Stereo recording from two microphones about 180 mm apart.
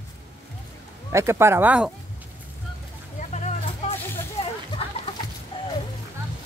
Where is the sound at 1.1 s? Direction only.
15° right (ahead or behind).